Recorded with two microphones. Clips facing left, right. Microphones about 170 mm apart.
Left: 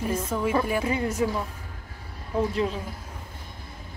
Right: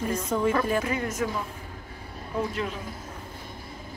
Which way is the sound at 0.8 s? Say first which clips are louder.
Left 3 dB; 30° left (ahead or behind).